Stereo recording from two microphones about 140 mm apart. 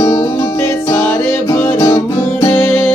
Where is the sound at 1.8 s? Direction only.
20° left (ahead or behind).